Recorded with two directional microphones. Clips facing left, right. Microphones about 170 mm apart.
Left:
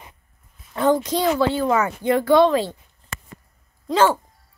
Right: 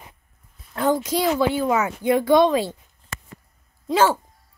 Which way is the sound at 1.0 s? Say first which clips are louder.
Left 1 dB; 10° right (ahead or behind).